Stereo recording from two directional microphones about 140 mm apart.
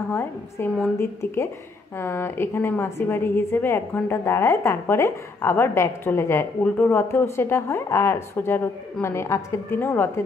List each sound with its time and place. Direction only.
0.1 s a woman's voice: 15° left (ahead or behind)